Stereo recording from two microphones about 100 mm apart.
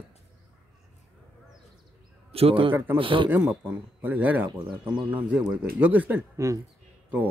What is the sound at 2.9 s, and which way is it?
Speech, 60° right (ahead or behind).